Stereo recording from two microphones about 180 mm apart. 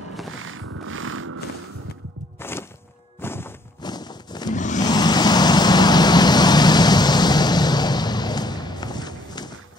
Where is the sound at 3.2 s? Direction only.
15° left (ahead or behind).